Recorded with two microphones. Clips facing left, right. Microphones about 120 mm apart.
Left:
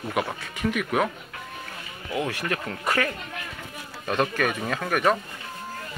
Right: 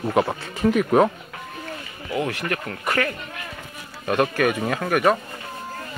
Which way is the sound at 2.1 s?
15° left (ahead or behind).